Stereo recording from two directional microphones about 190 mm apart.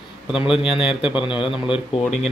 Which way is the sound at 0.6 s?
5° right (ahead or behind).